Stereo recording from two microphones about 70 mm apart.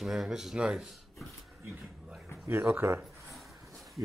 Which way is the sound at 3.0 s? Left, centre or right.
Centre.